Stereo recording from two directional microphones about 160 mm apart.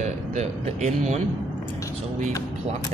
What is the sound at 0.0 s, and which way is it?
Speech, 45° right (ahead or behind).